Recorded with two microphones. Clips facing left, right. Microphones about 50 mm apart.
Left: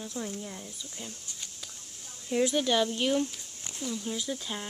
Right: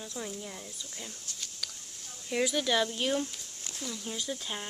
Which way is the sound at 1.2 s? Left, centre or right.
Centre.